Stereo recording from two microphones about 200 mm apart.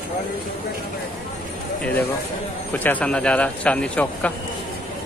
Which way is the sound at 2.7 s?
10° left (ahead or behind).